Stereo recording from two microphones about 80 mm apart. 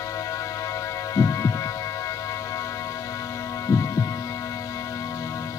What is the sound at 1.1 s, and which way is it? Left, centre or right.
Hum, left.